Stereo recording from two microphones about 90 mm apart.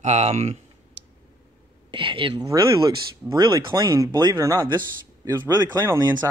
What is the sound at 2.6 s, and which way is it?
Speech, 65° right (ahead or behind).